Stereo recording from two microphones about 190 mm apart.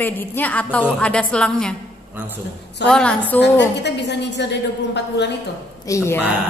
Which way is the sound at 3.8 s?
65° left (ahead or behind).